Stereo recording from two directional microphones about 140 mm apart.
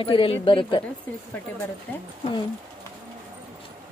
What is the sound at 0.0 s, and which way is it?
Speech, 40° left (ahead or behind).